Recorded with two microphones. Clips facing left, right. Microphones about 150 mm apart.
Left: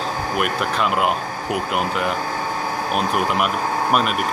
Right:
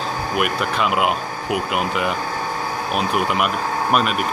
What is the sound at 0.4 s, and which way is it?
Speech, 5° right (ahead or behind).